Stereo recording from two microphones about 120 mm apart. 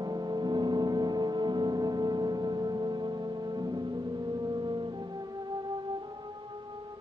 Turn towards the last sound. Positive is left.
turn(degrees=-35)  # may be behind; listen again after turning